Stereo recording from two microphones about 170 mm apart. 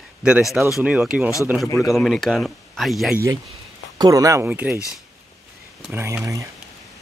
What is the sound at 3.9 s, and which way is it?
Speech, 20° right (ahead or behind).